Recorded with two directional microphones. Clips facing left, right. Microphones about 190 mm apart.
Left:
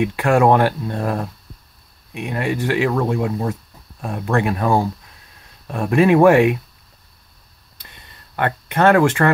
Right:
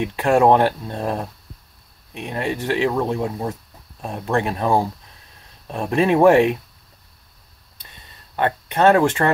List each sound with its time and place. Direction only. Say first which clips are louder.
0.1 s speech: right 2 dB; 25° right (ahead or behind)
8.4 s speech: even; 20° right (ahead or behind)